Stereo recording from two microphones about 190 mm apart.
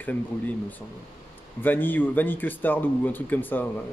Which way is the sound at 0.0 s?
10° left (ahead or behind).